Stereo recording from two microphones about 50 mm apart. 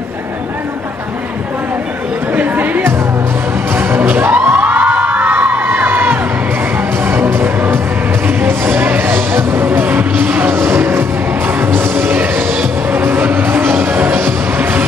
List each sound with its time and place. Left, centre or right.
2.3 s chatter: right
3.7 s music: right
4.3 s crowd: right
7.1 s music: right